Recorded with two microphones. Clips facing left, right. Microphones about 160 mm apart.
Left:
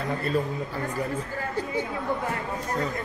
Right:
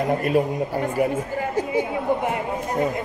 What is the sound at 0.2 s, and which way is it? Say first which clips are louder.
Speech: right 6 dB; 15° right (ahead or behind).